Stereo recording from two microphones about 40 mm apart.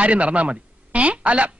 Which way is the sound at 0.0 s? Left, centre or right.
Right.